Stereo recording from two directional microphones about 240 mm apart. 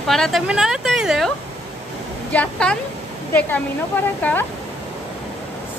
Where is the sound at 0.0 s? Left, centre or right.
Centre.